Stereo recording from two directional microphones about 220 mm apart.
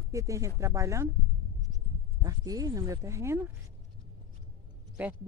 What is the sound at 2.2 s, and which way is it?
Speech, 15° right (ahead or behind).